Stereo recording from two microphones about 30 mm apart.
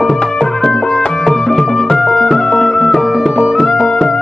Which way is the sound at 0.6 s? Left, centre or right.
Centre.